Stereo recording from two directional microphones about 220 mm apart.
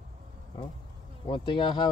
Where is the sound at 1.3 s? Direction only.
20° left (ahead or behind).